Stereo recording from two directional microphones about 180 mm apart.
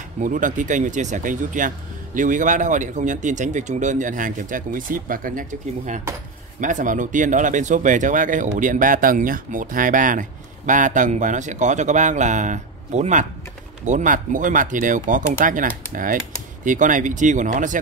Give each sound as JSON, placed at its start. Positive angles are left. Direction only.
{"t": 0.2, "sound": "speech", "side_deg": -45}